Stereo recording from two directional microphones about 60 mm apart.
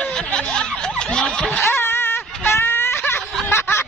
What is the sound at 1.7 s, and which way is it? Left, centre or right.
Wail, left.